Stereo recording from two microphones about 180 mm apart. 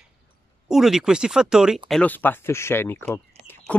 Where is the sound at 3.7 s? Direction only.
5° left (ahead or behind).